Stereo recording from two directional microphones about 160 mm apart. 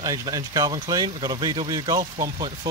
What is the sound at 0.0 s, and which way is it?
Speech, 20° right (ahead or behind).